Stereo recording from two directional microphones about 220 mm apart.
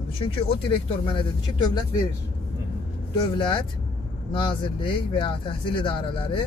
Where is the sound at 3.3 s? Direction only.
20° left (ahead or behind).